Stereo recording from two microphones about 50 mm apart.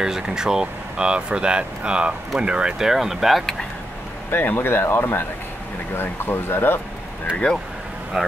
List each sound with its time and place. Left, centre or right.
0.0 s speech: centre
2.9 s speech: centre
4.3 s speech: left
8.2 s speech: centre